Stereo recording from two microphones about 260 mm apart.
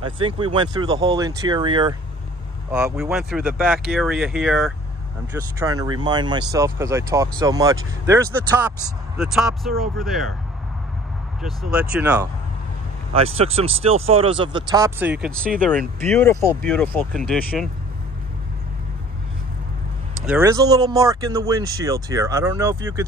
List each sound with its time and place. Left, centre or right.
0.0 s speech: right
2.7 s speech: centre
5.3 s speech: centre
11.4 s speech: centre
13.1 s speech: right; by 17.6 s centre
20.2 s speech: centre